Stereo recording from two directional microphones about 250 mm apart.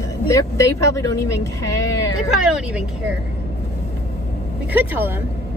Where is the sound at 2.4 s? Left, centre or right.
Centre.